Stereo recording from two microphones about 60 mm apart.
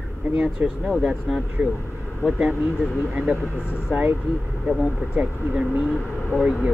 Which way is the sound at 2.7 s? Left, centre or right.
Centre.